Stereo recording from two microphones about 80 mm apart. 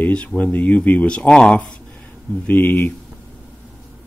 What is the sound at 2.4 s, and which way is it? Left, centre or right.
Speech, left.